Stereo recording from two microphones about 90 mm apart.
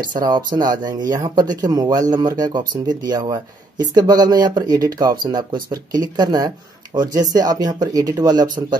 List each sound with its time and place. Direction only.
0.2 s speech: 50° right (ahead or behind)